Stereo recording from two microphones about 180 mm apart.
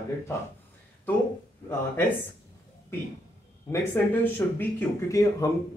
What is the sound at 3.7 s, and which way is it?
Speech, 10° left (ahead or behind).